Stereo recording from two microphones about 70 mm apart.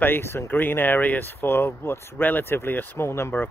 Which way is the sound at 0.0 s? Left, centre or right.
Left.